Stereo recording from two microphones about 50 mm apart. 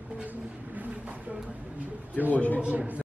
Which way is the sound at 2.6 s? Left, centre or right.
Right.